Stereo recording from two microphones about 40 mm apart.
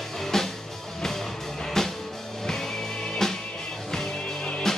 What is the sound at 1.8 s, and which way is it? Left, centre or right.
Music, centre.